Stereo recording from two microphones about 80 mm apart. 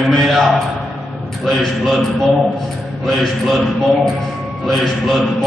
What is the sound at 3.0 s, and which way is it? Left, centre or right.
Speech, centre.